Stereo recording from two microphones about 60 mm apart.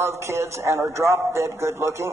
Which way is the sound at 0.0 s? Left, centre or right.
Right.